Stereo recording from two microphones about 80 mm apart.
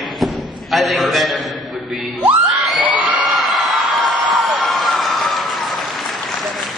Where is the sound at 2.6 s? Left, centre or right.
Centre.